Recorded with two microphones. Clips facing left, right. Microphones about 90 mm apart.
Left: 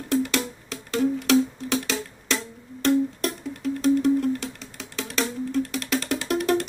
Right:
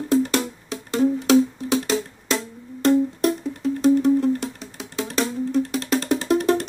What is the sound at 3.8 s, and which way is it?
Music, 25° right (ahead or behind).